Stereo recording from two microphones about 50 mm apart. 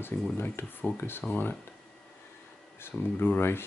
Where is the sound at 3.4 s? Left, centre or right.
Left.